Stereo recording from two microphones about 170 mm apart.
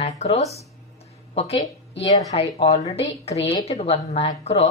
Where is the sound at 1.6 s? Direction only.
25° left (ahead or behind).